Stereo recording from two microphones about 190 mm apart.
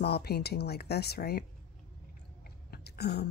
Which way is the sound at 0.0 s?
55° left (ahead or behind).